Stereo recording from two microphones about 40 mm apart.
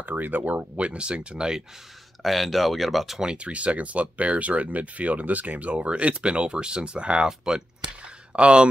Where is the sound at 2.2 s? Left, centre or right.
Centre.